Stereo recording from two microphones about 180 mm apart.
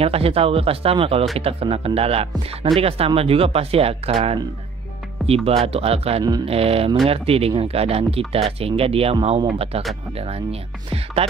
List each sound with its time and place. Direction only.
0.0 s speech: 35° right (ahead or behind)
6.2 s speech: 20° right (ahead or behind)
6.5 s speech: 35° right (ahead or behind)